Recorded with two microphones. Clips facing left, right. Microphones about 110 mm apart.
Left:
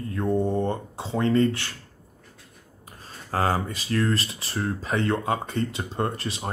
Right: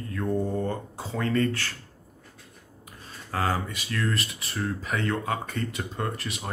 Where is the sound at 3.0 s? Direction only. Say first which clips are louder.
Left 3 dB; 35° left (ahead or behind).